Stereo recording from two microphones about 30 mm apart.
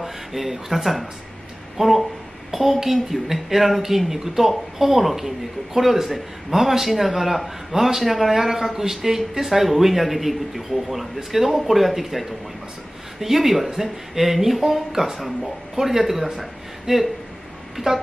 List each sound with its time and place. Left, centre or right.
0.0 s speech: centre
1.8 s speech: centre
15.1 s speech: centre
15.7 s speech: centre
17.8 s speech: right